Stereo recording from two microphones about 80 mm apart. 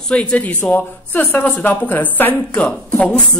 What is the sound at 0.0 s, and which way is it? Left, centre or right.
A woman's voice, centre.